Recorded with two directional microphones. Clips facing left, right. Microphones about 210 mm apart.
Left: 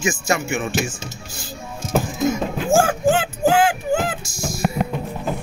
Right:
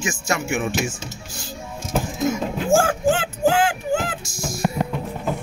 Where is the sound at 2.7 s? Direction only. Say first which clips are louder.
Left 1 dB; 10° left (ahead or behind).